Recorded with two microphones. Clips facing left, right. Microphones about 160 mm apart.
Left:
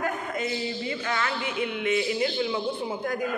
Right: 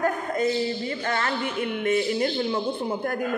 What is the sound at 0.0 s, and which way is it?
A man's voice, 45° right (ahead or behind).